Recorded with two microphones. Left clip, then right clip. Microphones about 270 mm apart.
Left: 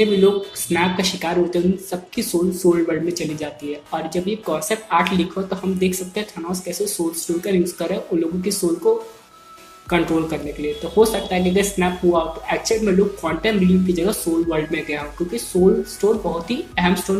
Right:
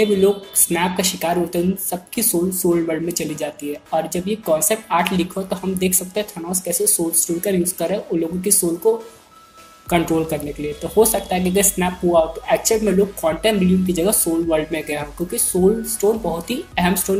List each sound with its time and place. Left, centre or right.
0.6 s speech: right